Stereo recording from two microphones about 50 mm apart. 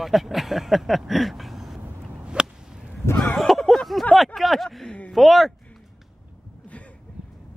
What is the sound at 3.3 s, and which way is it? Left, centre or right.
Speech, centre.